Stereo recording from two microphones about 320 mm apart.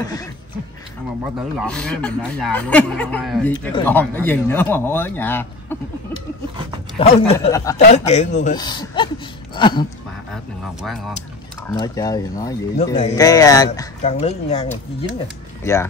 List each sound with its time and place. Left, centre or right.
0.0 s speech: centre
1.6 s speech: centre
3.5 s speech: centre
7.0 s a man's voice: centre
10.3 s speech: centre
11.6 s a man's voice: centre
15.6 s speech: centre